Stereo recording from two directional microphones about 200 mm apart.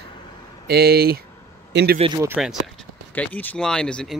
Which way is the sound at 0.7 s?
50° right (ahead or behind).